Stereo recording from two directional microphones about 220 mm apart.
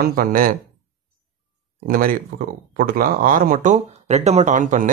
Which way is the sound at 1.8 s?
40° right (ahead or behind).